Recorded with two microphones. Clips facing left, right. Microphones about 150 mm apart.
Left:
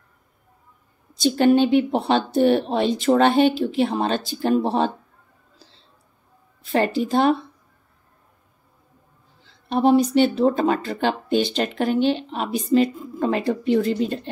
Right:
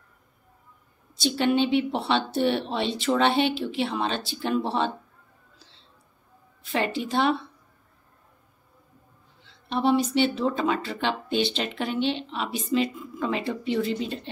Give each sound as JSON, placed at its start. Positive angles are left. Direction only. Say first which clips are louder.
{"t": 1.1, "sound": "speech", "louder": "left 7 dB", "side_deg": 45}
{"t": 5.6, "sound": "a sound", "louder": "left 7 dB", "side_deg": 40}
{"t": 6.6, "sound": "a woman's voice", "louder": "left 6 dB", "side_deg": 40}
{"t": 9.4, "sound": "speech", "louder": "left 6 dB", "side_deg": 40}